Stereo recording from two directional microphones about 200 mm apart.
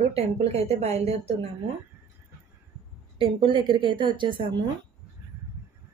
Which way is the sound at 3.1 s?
25° right (ahead or behind).